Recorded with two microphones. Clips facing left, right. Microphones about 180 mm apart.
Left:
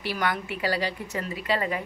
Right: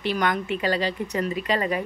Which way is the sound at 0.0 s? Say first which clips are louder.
Right 4 dB; 20° right (ahead or behind).